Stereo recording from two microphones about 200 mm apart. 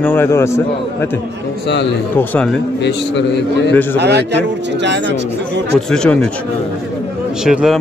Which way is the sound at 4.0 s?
55° right (ahead or behind).